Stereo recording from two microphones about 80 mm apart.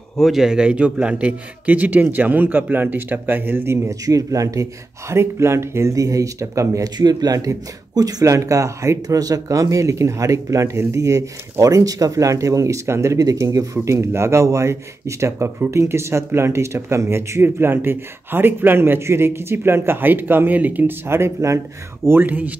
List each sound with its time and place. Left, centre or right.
0.2 s a man's voice: centre; by 3.9 s right
4.0 s speech: right
5.1 s speech: right
7.0 s speech: right
22.0 s a man's voice: right